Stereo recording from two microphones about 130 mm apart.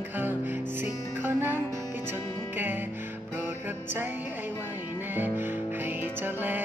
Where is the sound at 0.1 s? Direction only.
15° right (ahead or behind).